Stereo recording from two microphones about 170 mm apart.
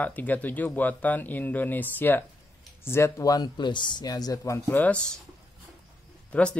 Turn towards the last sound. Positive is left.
turn(degrees=10)  # may be behind; listen again after turning